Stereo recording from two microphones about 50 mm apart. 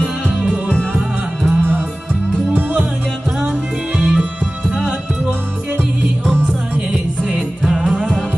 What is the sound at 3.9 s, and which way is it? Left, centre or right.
Music, centre.